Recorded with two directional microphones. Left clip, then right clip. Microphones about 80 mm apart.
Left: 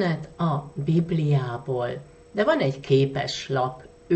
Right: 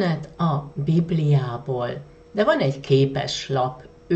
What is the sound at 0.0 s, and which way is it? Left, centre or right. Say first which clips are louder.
Speech: right 2 dB; left.